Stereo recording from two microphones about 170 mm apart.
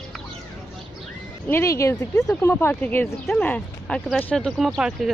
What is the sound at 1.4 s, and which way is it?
Speech, 15° left (ahead or behind).